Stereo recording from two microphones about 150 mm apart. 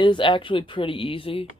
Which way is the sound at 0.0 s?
30° left (ahead or behind).